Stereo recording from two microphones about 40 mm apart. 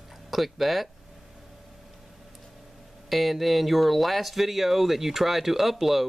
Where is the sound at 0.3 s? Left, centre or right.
Centre.